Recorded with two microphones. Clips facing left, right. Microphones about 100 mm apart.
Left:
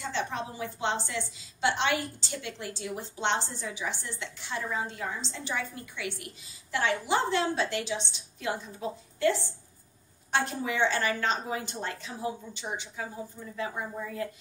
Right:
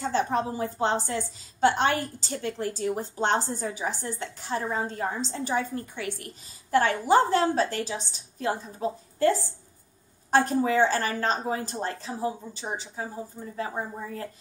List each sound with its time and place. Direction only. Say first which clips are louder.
0.0 s a woman's voice: right 7 dB; 40° right (ahead or behind)